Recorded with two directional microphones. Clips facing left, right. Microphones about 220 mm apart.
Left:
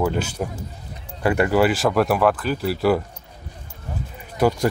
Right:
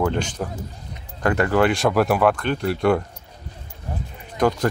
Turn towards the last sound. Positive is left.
turn(degrees=10)  # may be behind; listen again after turning